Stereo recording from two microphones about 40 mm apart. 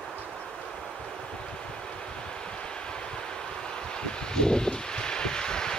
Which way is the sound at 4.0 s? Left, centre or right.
Left.